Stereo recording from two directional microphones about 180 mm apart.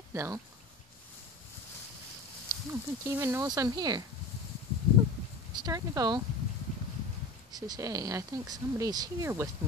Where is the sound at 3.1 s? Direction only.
15° right (ahead or behind).